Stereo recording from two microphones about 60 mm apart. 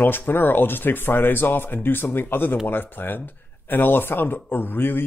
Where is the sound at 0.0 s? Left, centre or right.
Left.